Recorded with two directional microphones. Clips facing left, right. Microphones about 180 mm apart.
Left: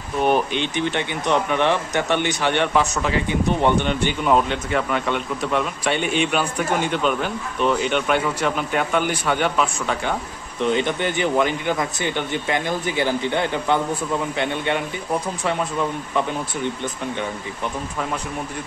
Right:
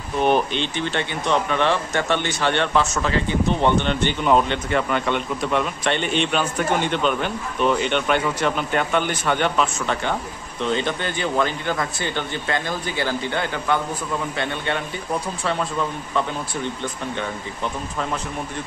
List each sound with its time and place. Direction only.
0.2 s speech: 10° left (ahead or behind)